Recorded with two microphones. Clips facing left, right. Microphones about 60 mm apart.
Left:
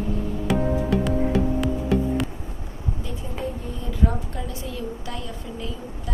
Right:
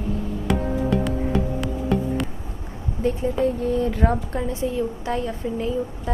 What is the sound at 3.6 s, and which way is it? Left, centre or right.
Speech, right.